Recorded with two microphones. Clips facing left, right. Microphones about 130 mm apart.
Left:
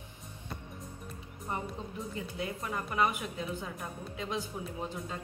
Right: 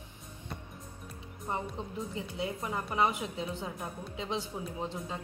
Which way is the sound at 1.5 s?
20° right (ahead or behind).